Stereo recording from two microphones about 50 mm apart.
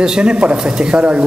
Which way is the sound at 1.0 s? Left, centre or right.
Right.